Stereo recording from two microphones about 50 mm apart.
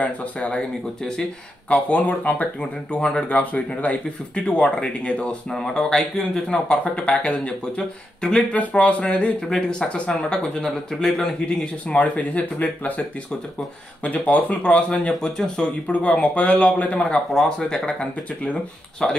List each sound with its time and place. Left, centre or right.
0.0 s speech: left
1.7 s speech: left
5.5 s speech: centre
8.5 s speech: left
9.5 s speech: centre
11.6 s speech: left
14.0 s speech: left; by 15.7 s centre
15.9 s speech: left
17.3 s speech: centre